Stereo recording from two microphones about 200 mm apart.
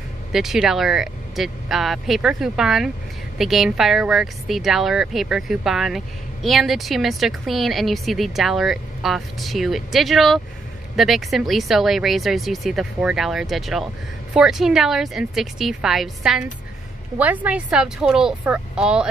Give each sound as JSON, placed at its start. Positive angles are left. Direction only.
{"t": 0.3, "sound": "speech", "side_deg": 0}